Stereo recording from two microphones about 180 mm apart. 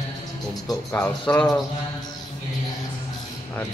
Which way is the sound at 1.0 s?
5° left (ahead or behind).